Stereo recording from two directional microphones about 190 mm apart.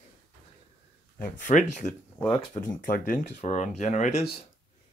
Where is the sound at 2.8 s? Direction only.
45° left (ahead or behind).